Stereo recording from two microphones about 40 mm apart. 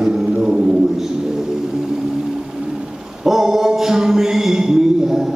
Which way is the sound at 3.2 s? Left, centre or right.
Centre.